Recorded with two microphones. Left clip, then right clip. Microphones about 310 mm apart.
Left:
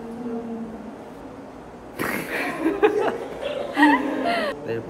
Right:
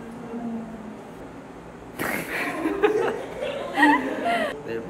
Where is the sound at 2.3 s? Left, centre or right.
Left.